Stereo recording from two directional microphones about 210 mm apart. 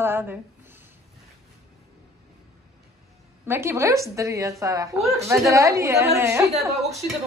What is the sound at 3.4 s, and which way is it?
Speech, 10° right (ahead or behind).